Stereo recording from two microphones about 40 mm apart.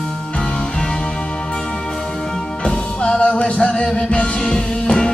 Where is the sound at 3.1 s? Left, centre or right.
Left.